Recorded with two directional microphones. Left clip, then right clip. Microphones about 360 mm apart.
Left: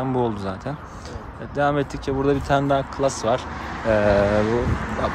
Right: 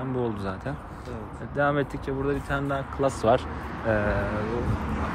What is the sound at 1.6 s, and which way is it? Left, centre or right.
Speech, centre.